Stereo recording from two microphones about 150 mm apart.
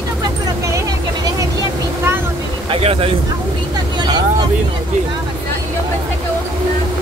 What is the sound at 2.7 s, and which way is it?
Speech, 40° right (ahead or behind).